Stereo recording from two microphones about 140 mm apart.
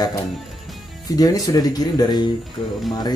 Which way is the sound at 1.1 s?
25° left (ahead or behind).